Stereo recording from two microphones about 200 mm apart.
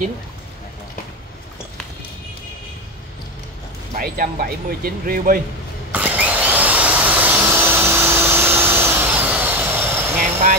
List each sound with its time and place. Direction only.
3.9 s speech: 45° right (ahead or behind)
5.9 s vacuum cleaner: 5° right (ahead or behind)